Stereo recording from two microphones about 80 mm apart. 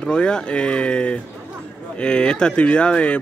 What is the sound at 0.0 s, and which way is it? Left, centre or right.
Speech, centre.